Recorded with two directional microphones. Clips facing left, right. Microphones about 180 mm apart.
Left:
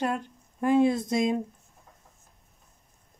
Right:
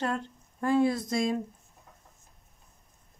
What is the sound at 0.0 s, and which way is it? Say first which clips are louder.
Speech: left 2 dB; 15° left (ahead or behind).